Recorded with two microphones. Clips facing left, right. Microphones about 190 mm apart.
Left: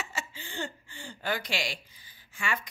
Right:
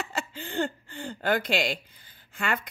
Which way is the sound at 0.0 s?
60° right (ahead or behind).